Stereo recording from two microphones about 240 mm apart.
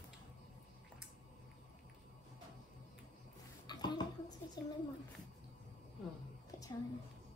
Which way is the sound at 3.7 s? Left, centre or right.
Centre.